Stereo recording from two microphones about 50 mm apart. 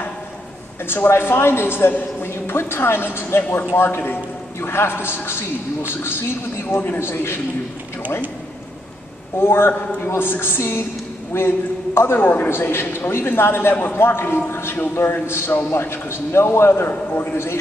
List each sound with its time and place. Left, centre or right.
0.8 s a woman's voice: left
6.7 s a man's voice: left
7.0 s a woman's voice: left
9.4 s a woman's voice: left
10.6 s a man's voice: left
17.1 s a man's voice: left